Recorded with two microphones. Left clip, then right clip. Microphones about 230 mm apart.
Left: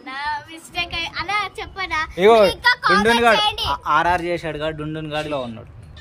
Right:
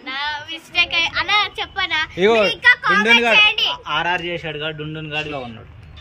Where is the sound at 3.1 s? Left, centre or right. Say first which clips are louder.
Right 3 dB; centre.